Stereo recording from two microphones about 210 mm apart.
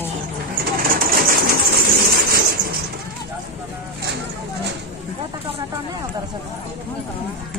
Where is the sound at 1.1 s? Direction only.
45° right (ahead or behind).